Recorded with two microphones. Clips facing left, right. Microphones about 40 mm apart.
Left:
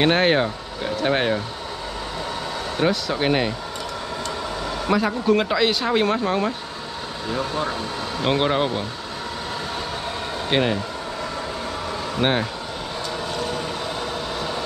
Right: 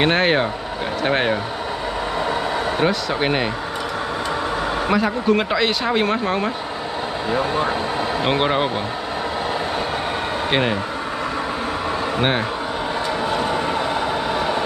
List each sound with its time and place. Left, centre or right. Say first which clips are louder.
0.0 s speech: right 1 dB; centre
2.8 s speech: left 1 dB; centre
4.9 s speech: even; centre
10.5 s speech: even; centre
12.2 s speech: left 1 dB; centre
13.3 s vehicle: right 5 dB; right